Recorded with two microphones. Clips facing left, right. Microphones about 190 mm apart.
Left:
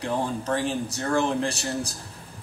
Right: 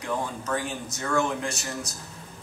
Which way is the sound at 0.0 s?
35° left (ahead or behind).